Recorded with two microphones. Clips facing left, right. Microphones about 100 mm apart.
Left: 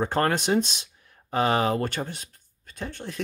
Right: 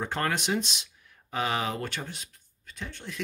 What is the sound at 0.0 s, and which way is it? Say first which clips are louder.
Speech: left 6 dB; 40° left (ahead or behind).